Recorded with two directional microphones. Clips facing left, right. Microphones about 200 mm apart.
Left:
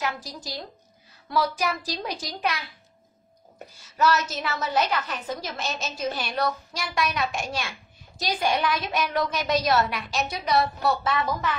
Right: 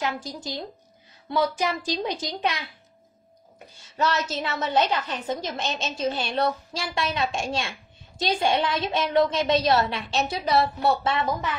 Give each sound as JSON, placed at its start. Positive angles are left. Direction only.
{"t": 0.0, "sound": "a woman's voice", "side_deg": -25}
{"t": 3.9, "sound": "a woman's voice", "side_deg": -25}